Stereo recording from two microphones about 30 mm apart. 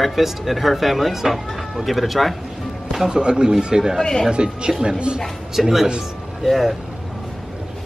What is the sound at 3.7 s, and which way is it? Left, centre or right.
Speech, centre.